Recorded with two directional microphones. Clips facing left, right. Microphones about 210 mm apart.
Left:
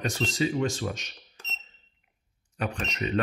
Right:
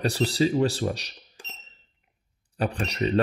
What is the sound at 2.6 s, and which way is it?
Speech, 35° right (ahead or behind).